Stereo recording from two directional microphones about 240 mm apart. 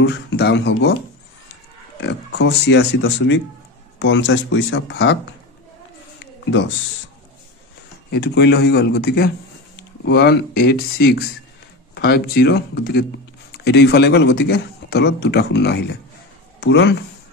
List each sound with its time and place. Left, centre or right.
0.0 s a man's voice: left
2.0 s a man's voice: left
8.1 s a man's voice: left